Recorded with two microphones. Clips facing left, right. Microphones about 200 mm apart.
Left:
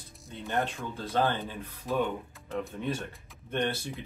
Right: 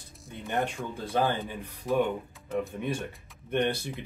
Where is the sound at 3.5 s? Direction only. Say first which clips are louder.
Right 3 dB; 15° right (ahead or behind).